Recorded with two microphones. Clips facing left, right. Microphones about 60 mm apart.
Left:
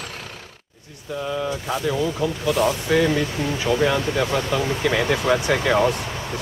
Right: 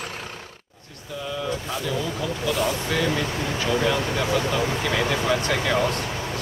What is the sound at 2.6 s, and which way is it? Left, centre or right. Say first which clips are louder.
Speech: left 7 dB; centre.